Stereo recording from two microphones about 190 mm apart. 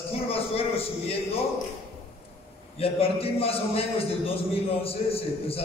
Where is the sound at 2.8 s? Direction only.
30° left (ahead or behind).